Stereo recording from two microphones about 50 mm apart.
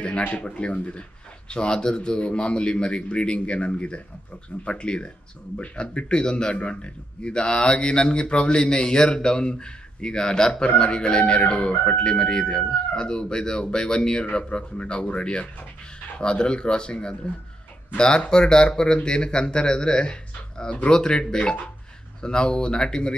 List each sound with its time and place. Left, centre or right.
0.3 s a man's voice: left